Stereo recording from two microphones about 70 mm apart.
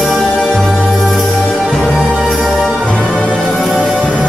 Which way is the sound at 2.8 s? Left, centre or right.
Centre.